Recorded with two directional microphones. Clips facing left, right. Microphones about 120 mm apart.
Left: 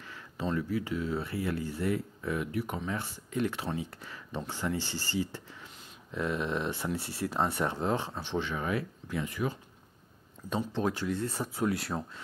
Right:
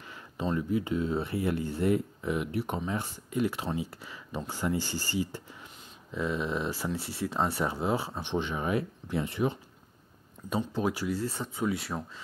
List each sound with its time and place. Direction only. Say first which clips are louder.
0.1 s speech: right 1 dB; 20° right (ahead or behind)
3.8 s speech: right 2 dB; 10° right (ahead or behind)
6.1 s speech: right 1 dB; centre (ahead or behind); by 9.6 s 25° right (ahead or behind)
10.5 s speech: right 1 dB; 10° right (ahead or behind)